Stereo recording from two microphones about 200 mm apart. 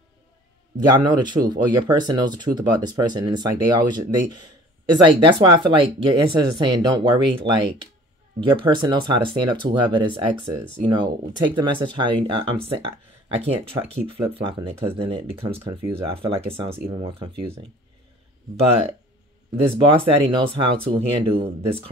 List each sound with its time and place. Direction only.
0.7 s speech: 20° right (ahead or behind)
13.7 s speech: 25° right (ahead or behind)
19.5 s speech: 25° right (ahead or behind)